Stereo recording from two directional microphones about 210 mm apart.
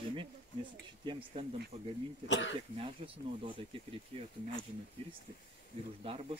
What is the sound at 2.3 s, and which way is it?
Speech, 60° left (ahead or behind).